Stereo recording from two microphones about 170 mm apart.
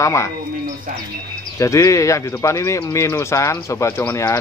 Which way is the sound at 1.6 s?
20° left (ahead or behind).